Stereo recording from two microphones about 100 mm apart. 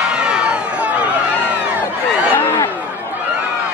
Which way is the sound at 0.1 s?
10° right (ahead or behind).